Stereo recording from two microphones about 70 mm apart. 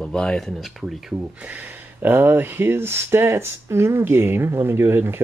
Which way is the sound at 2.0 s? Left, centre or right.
Right.